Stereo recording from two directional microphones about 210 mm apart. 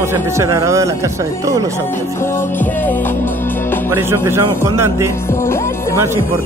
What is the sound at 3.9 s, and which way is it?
Speech, 10° right (ahead or behind).